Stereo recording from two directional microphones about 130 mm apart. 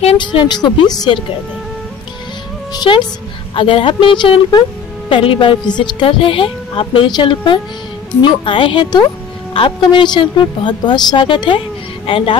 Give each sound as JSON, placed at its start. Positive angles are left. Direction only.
{"t": 0.2, "sound": "a woman's voice", "side_deg": 35}
{"t": 2.7, "sound": "a woman's voice", "side_deg": 30}
{"t": 3.5, "sound": "a woman's voice", "side_deg": 45}